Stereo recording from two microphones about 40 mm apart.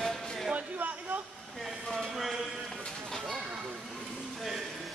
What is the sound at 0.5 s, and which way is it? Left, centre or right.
Speech, right.